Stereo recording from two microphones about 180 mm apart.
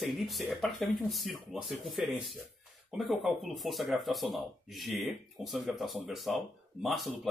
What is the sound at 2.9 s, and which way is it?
Speech, centre (ahead or behind).